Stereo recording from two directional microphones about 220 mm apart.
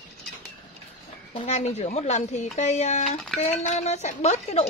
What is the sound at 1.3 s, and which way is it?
A woman's voice, 30° left (ahead or behind).